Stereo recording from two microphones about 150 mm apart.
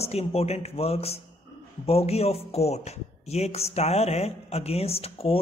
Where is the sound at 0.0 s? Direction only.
45° left (ahead or behind).